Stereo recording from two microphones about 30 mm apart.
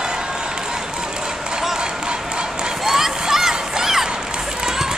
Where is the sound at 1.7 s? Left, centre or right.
Right.